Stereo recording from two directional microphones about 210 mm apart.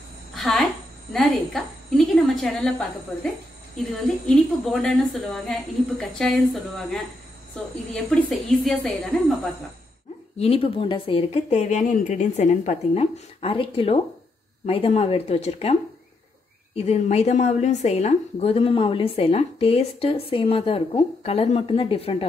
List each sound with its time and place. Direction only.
0.3 s a sound: centre (ahead or behind)
1.1 s a woman's voice: centre (ahead or behind)
4.3 s a woman's voice: centre (ahead or behind)
10.4 s a woman's voice: 25° left (ahead or behind)